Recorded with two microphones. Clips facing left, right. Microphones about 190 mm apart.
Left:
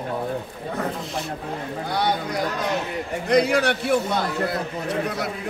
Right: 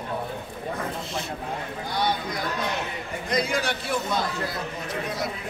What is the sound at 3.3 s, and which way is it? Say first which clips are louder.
Speech: left 7 dB; 65° left (ahead or behind).